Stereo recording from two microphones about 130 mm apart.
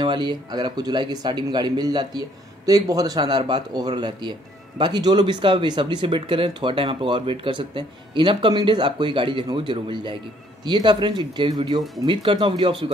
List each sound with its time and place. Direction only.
0.0 s speech: 35° right (ahead or behind)